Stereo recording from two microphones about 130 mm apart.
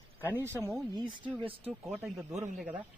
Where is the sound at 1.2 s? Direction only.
45° right (ahead or behind).